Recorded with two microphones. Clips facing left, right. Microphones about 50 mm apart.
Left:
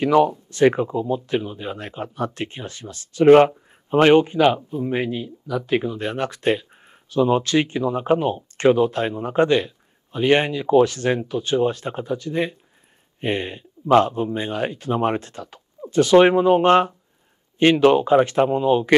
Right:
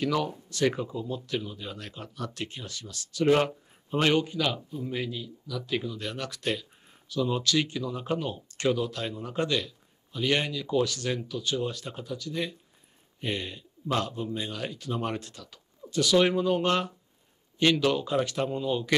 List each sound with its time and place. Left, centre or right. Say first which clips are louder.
0.0 s speech: left 11 dB; left